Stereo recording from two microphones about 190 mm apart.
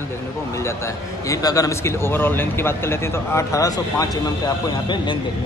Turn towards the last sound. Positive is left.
turn(degrees=25)  # may be behind; listen again after turning